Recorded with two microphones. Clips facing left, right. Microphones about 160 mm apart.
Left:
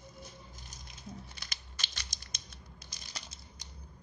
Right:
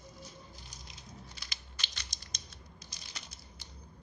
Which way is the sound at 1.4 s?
45° left (ahead or behind).